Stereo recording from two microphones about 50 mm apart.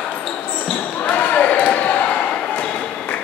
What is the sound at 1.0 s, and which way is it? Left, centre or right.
Basketball bounce, left.